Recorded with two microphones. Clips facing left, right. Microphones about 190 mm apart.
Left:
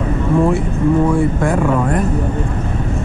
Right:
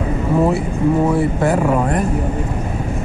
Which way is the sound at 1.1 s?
5° right (ahead or behind).